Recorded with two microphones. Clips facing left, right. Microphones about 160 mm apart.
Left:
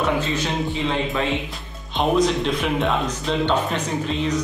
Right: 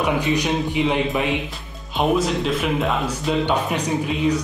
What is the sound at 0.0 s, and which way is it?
Speech, 15° right (ahead or behind).